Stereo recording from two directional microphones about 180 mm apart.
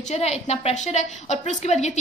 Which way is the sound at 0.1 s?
35° left (ahead or behind).